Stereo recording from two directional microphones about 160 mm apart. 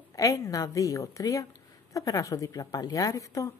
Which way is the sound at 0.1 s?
20° left (ahead or behind).